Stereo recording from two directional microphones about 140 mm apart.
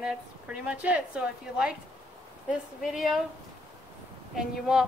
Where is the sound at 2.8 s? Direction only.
Centre (ahead or behind).